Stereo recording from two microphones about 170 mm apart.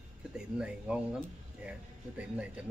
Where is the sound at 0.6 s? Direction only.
5° right (ahead or behind).